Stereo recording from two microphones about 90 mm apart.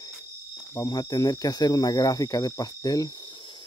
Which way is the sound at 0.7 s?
45° left (ahead or behind).